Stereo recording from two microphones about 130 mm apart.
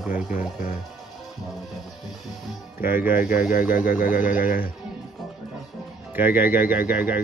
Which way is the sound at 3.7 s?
90° left.